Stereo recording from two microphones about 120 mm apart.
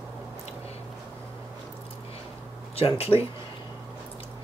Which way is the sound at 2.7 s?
55° left (ahead or behind).